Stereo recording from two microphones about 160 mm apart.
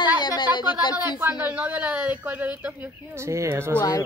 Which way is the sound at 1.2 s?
10° right (ahead or behind).